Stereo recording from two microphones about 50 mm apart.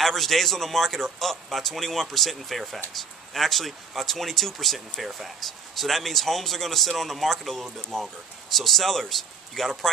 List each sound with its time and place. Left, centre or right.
0.0 s speech: centre